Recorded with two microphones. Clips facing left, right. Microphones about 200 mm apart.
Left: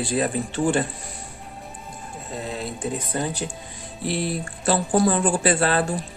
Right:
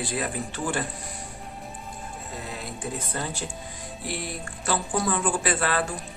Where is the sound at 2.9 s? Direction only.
15° left (ahead or behind).